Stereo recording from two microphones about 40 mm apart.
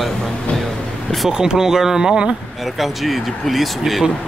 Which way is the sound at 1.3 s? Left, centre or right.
Centre.